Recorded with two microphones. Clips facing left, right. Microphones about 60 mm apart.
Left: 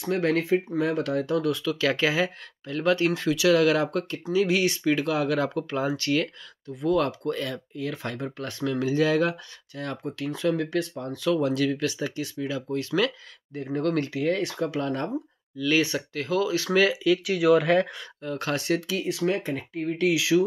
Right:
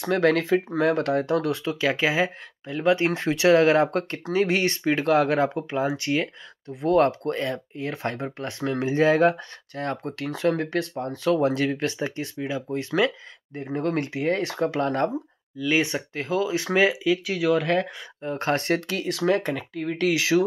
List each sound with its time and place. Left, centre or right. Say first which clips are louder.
0.0 s speech: right 3 dB; right
0.8 s speech: right 4 dB; right
1.8 s speech: right 2 dB; centre
3.2 s speech: right 2 dB; right
5.4 s speech: right 3 dB; right
6.8 s speech: right 4 dB; right
13.5 s speech: even; right
14.2 s speech: right 4 dB; right
15.5 s speech: even; centre
15.8 s speech: even; right
17.0 s speech: left 1 dB; centre
17.4 s speech: left 4 dB; centre
18.2 s speech: right 4 dB; right